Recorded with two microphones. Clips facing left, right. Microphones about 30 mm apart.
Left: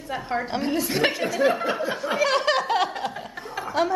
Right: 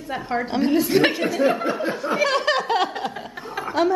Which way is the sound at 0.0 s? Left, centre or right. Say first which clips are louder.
Right 2 dB; centre.